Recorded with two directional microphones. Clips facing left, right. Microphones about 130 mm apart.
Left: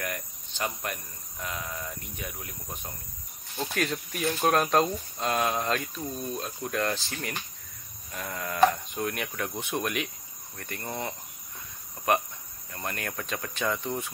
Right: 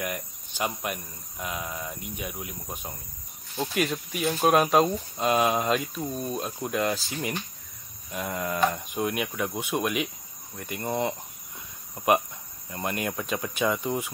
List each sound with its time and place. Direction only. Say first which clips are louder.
0.0 s speech: right 3 dB; 10° right (ahead or behind)
6.7 s speech: right 2 dB; 10° right (ahead or behind)
7.1 s speech: right 4 dB; 20° right (ahead or behind); by 10.0 s 5° right (ahead or behind)
10.5 s cricket: right 4 dB; 10° right (ahead or behind)
10.8 s speech: right 7 dB; 25° right (ahead or behind)